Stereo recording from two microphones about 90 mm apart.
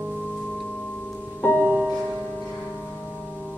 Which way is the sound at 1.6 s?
15° right (ahead or behind).